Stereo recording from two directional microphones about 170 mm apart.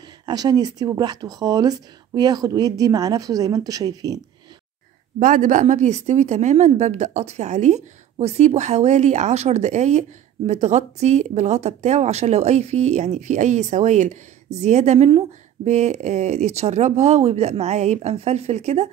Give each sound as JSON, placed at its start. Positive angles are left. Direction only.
{"t": 0.3, "sound": "speech", "side_deg": -25}
{"t": 5.2, "sound": "speech", "side_deg": -50}